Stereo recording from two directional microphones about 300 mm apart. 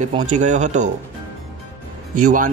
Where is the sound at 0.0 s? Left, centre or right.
Right.